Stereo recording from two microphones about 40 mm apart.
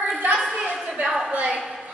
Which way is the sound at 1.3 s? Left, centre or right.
Right.